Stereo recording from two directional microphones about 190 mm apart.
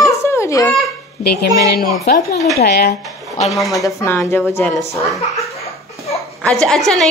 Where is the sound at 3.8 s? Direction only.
15° left (ahead or behind).